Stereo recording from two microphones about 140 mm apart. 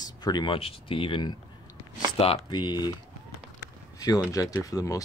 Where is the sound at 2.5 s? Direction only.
30° left (ahead or behind).